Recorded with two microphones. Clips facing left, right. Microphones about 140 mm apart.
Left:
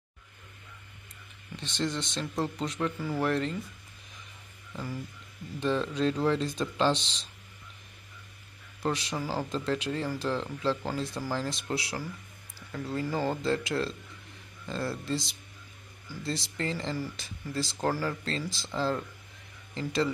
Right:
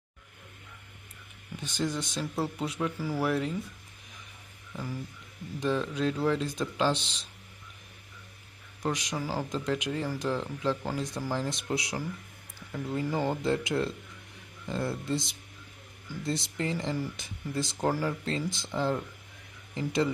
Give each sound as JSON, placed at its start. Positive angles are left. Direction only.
{"t": 1.6, "sound": "speech", "side_deg": -10}
{"t": 5.6, "sound": "speech", "side_deg": -10}
{"t": 8.8, "sound": "speech", "side_deg": -10}